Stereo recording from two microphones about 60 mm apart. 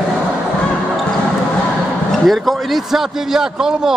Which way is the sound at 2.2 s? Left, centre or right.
Centre.